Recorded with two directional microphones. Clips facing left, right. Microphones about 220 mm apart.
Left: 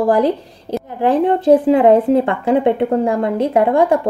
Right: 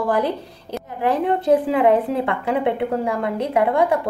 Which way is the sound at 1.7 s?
45° left (ahead or behind).